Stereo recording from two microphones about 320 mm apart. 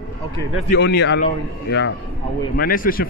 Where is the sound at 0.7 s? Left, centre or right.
Left.